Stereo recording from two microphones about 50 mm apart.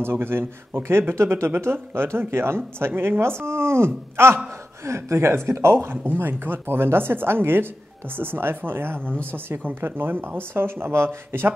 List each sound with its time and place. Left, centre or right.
0.0 s speech: right